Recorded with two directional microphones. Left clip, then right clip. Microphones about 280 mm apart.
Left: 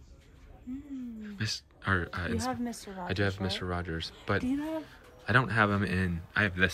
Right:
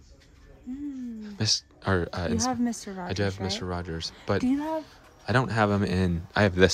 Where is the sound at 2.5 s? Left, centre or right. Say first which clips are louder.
Right 6 dB; right.